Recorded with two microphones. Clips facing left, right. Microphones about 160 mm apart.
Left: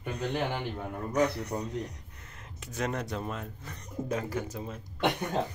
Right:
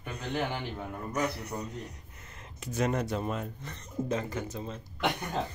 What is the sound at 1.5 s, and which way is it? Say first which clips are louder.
Speech: left 3 dB; 20° left (ahead or behind).